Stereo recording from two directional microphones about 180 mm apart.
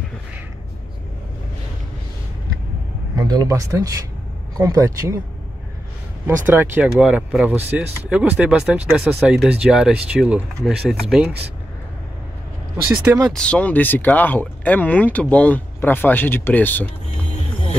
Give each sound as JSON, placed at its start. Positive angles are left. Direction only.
{"t": 3.2, "sound": "speech", "side_deg": -20}
{"t": 6.2, "sound": "speech", "side_deg": -10}
{"t": 13.0, "sound": "speech", "side_deg": -15}
{"t": 13.3, "sound": "speech", "side_deg": 5}